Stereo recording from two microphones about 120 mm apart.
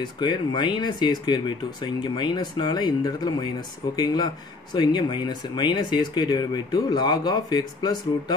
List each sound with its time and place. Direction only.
0.0 s speech: 40° left (ahead or behind)